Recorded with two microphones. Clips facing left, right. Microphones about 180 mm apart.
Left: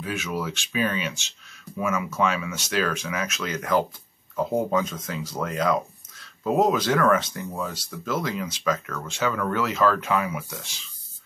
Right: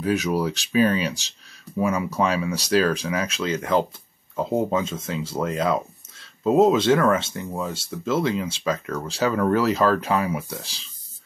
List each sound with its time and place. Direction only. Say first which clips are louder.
0.0 s speech: right 7 dB; 40° right (ahead or behind)